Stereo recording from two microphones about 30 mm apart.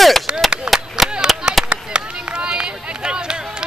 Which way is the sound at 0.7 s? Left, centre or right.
Right.